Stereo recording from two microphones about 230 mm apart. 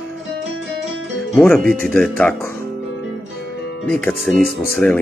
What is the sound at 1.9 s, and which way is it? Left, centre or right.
Speech, centre.